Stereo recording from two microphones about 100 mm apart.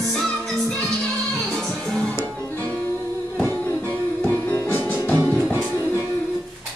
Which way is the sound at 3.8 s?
20° left (ahead or behind).